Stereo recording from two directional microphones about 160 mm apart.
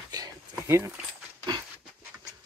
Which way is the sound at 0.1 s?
20° right (ahead or behind).